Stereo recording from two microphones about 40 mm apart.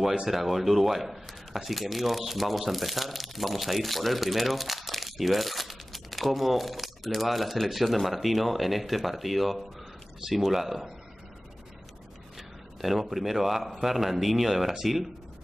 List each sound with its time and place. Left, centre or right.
0.3 s speech: centre
12.4 s speech: centre